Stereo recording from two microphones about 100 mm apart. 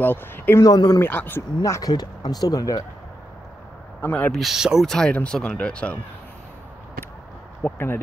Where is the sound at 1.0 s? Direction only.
20° left (ahead or behind).